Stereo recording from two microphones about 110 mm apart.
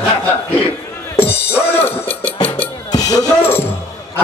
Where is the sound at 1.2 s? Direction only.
20° left (ahead or behind).